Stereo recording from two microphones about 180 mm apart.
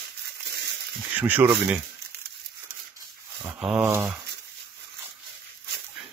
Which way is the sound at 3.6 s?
10° right (ahead or behind).